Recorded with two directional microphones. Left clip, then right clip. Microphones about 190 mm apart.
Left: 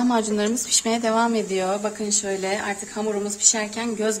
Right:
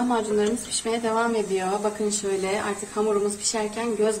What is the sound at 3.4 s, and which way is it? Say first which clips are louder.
Speech: left 3 dB; 50° left (ahead or behind).